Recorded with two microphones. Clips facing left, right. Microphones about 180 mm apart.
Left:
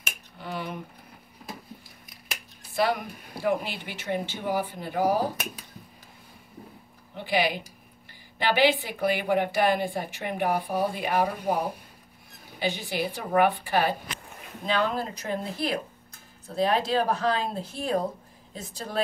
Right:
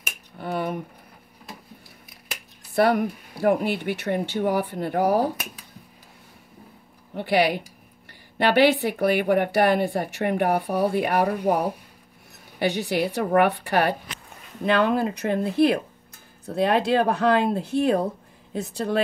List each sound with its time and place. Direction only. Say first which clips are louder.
0.4 s finger snapping: right 7 dB; 55° right (ahead or behind)
2.7 s a woman's voice: right 6 dB; 60° right (ahead or behind)
7.2 s a woman's voice: right 5 dB; 65° right (ahead or behind)